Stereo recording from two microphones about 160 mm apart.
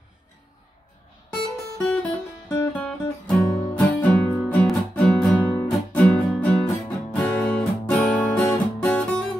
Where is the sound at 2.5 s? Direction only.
10° left (ahead or behind).